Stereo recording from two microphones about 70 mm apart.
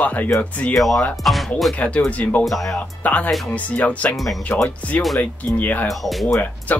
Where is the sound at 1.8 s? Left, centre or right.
Centre.